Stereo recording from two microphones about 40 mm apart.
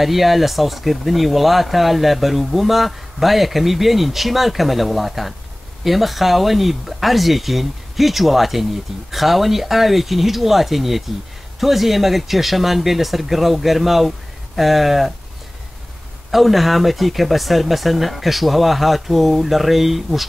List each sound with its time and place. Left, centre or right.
0.0 s speech: centre
16.3 s speech: centre